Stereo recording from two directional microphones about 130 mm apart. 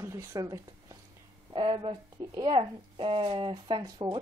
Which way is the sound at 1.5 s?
40° right (ahead or behind).